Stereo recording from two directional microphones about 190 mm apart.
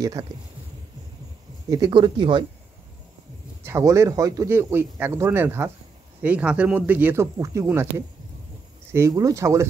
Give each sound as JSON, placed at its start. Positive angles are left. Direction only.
{"t": 0.0, "sound": "speech", "side_deg": -20}
{"t": 1.7, "sound": "speech", "side_deg": -20}
{"t": 3.6, "sound": "speech", "side_deg": -15}